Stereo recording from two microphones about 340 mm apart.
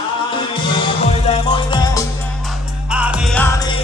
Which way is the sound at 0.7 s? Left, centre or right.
Centre.